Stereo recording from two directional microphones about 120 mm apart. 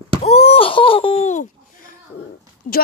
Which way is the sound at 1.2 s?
85° left.